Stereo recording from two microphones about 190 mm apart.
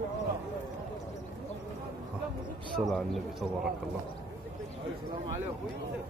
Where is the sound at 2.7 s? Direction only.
Centre (ahead or behind).